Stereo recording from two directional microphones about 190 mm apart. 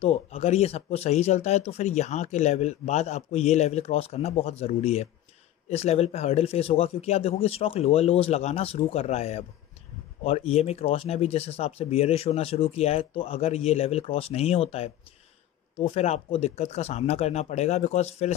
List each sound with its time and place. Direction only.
0.0 s speech: 30° left (ahead or behind)